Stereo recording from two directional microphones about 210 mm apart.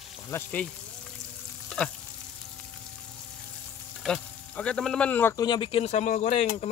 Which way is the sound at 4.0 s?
5° left (ahead or behind).